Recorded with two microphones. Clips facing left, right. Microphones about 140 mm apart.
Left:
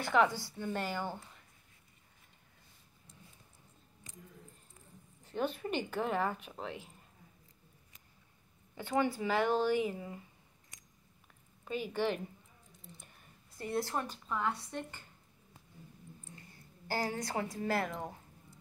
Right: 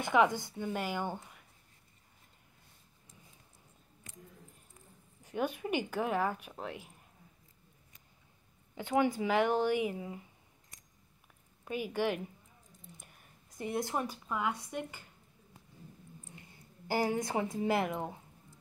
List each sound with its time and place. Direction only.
0.0 s speech: 20° right (ahead or behind)
5.2 s speech: 10° right (ahead or behind)
8.7 s speech: 15° right (ahead or behind)
11.6 s a woman's voice: 15° right (ahead or behind)
16.3 s a woman's voice: 15° right (ahead or behind)